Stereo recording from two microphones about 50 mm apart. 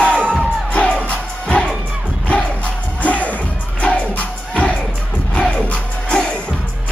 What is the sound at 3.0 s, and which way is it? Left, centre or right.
Music, left.